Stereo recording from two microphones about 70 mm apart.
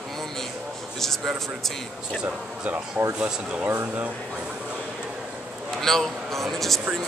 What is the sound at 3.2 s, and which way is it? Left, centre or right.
Speech, centre.